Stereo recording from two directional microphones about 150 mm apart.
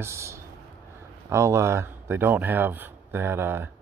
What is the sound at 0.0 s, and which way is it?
Speech, 20° right (ahead or behind).